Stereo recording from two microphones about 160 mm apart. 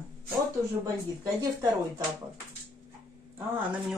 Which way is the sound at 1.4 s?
20° right (ahead or behind).